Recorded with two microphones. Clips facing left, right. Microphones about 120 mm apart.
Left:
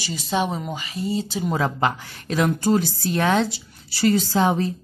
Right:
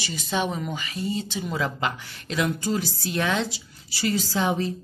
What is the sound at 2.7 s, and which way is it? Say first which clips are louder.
Speech: left 7 dB; 50° left (ahead or behind).